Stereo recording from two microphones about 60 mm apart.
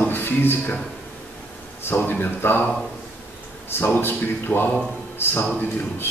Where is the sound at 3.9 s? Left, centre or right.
Left.